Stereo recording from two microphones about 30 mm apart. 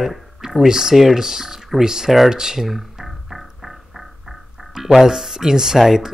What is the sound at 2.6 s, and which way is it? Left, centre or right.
Music, centre.